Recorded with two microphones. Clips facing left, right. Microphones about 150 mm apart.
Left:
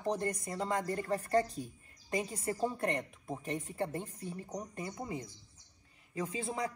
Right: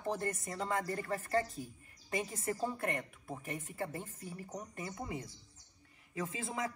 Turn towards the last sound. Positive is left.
turn(degrees=25)  # may be behind; listen again after turning